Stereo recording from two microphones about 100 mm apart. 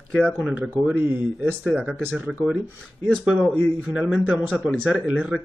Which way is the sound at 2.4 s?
5° right (ahead or behind).